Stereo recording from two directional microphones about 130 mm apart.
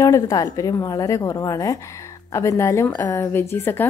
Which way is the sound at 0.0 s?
25° left (ahead or behind).